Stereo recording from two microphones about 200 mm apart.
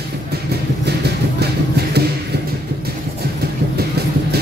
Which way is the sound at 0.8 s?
55° right (ahead or behind).